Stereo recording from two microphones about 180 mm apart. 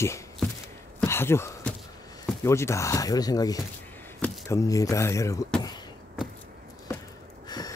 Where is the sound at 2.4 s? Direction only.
15° left (ahead or behind).